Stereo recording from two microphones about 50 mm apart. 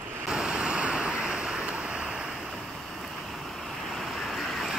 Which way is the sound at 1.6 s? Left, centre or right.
Right.